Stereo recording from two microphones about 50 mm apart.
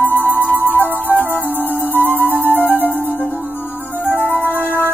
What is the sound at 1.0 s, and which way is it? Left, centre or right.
Music, right.